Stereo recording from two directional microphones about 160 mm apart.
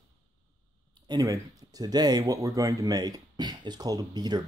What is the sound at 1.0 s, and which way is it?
Speech, 25° right (ahead or behind).